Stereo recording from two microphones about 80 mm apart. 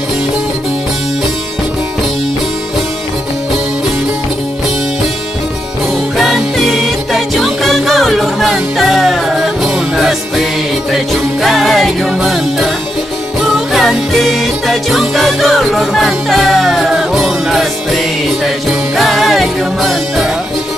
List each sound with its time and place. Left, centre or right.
6.1 s music: centre
11.4 s music: centre